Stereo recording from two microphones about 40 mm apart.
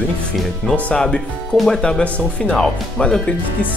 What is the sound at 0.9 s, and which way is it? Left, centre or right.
Speech, left.